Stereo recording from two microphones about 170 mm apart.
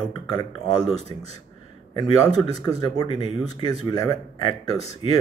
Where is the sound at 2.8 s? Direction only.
25° left (ahead or behind).